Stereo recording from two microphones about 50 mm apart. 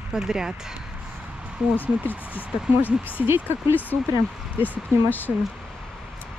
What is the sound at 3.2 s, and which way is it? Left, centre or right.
Speech, right.